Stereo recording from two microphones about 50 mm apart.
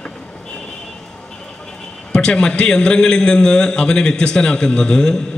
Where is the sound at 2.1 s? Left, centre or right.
Centre.